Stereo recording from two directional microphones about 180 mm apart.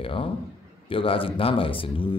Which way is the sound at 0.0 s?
30° left (ahead or behind).